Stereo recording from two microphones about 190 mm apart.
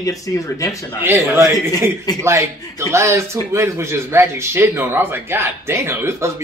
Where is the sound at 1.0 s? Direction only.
10° right (ahead or behind).